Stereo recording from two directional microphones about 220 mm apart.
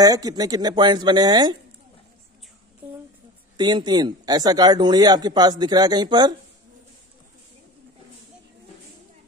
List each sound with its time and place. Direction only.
0.0 s speech: 15° right (ahead or behind)
3.5 s speech: 20° right (ahead or behind)